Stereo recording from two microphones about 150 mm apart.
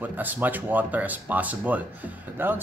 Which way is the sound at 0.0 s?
10° right (ahead or behind).